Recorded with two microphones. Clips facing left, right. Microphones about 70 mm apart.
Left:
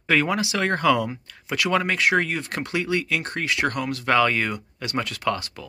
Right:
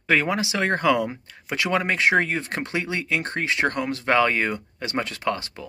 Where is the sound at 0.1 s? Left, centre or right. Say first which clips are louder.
Even; centre.